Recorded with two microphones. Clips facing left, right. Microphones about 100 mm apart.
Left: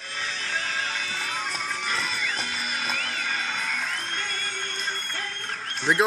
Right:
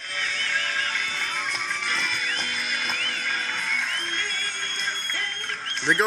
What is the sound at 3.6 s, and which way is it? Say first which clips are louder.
Music: right 1 dB; 45° left (ahead or behind).